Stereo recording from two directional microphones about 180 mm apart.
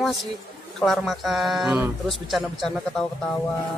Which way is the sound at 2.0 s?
Centre (ahead or behind).